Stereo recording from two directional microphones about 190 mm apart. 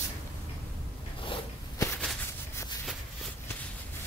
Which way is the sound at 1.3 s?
20° left (ahead or behind).